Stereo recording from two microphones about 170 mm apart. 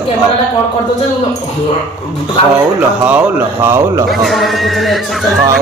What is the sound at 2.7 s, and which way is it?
A man's voice, 10° right (ahead or behind).